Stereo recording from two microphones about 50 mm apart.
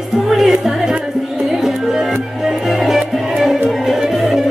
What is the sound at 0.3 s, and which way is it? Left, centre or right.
Music, centre.